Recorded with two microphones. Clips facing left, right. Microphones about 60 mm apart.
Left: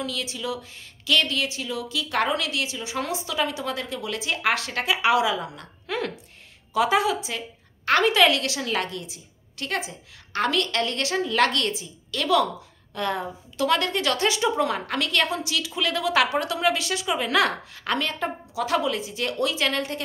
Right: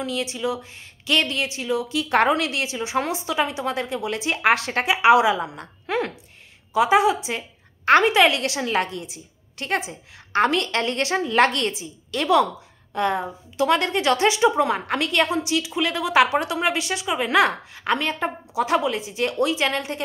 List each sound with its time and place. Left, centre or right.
0.0 s a woman's voice: right